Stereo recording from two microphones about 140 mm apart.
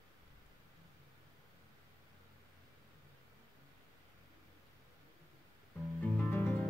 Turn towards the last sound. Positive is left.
turn(degrees=15)  # may be behind; listen again after turning